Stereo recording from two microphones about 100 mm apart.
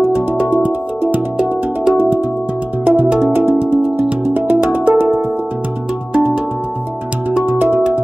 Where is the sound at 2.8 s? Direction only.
15° right (ahead or behind).